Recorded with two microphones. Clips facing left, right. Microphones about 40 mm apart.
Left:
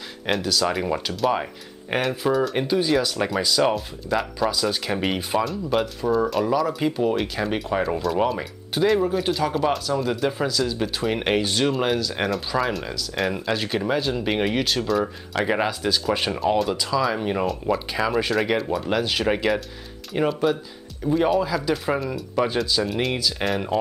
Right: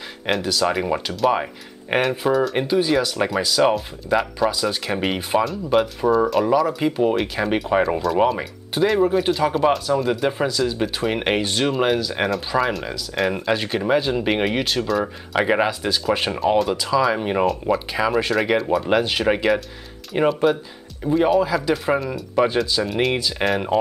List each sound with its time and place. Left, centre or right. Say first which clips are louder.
0.3 s speech: right 2 dB; centre
15.3 s speech: right 4 dB; centre
17.5 s speech: right 3 dB; centre
18.9 s speech: right 2 dB; centre